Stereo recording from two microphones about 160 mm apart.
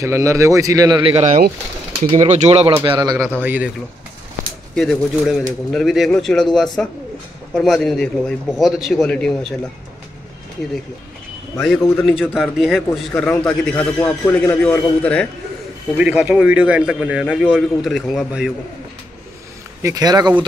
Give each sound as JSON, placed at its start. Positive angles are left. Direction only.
{"t": 0.0, "sound": "a man's voice", "side_deg": -20}
{"t": 2.1, "sound": "speech", "side_deg": -45}
{"t": 2.7, "sound": "a man's voice", "side_deg": -25}
{"t": 3.3, "sound": "a man's voice", "side_deg": -10}
{"t": 4.7, "sound": "a man's voice", "side_deg": 0}
{"t": 11.6, "sound": "a man's voice", "side_deg": 0}
{"t": 16.0, "sound": "a man's voice", "side_deg": -10}
{"t": 19.8, "sound": "a man's voice", "side_deg": -20}